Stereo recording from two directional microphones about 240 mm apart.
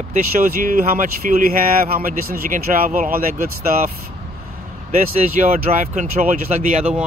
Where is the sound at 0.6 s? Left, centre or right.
Right.